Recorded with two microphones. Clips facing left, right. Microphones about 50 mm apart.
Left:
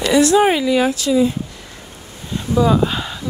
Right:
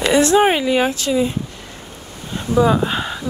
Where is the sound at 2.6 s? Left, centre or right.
Right.